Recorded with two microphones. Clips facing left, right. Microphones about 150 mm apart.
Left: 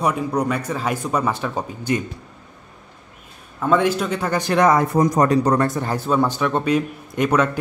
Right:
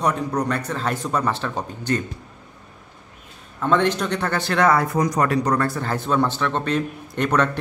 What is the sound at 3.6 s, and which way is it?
A man's voice, 10° left (ahead or behind).